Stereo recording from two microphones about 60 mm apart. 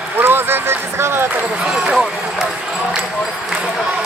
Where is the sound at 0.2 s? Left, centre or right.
Right.